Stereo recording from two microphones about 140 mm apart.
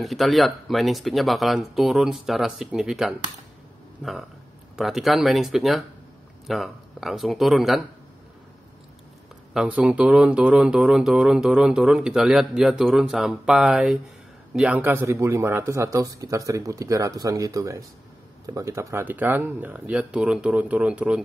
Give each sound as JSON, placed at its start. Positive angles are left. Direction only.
{"t": 0.0, "sound": "speech", "side_deg": 0}
{"t": 9.5, "sound": "speech", "side_deg": -5}